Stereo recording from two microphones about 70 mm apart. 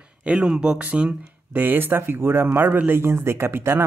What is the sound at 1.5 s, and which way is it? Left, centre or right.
Speech, right.